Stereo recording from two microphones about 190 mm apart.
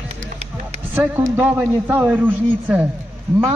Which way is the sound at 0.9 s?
10° right (ahead or behind).